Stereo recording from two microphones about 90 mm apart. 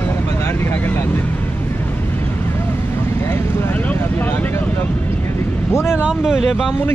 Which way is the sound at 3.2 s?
25° left (ahead or behind).